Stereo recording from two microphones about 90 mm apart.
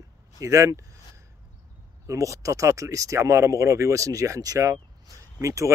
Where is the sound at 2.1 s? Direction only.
35° right (ahead or behind).